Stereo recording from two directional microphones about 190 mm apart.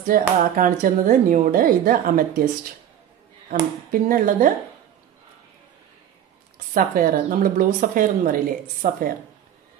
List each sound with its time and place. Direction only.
0.0 s speech: 45° right (ahead or behind)
3.4 s speech: 45° right (ahead or behind)
6.7 s speech: 50° right (ahead or behind)